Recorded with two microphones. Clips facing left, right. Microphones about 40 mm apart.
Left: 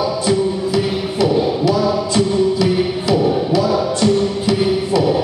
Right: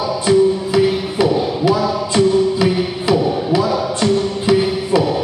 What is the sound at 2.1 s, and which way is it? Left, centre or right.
Music, centre.